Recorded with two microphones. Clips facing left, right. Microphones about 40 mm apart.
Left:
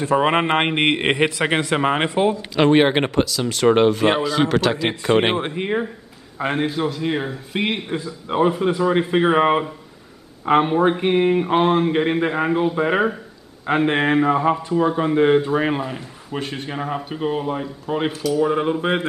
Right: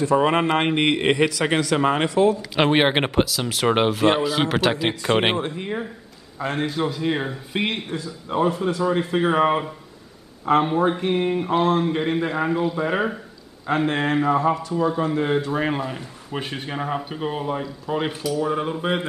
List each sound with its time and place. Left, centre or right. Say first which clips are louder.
0.0 s a man's voice: left 1 dB; left
2.5 s speech: left 3 dB; centre
5.4 s a man's voice: left 4 dB; left
6.7 s speech: left 1 dB; centre
7.9 s a man's voice: left 2 dB; left
15.3 s speech: left 4 dB; centre
18.4 s speech: left 5 dB; centre